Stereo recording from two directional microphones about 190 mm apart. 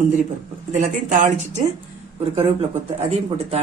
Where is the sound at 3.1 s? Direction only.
30° right (ahead or behind).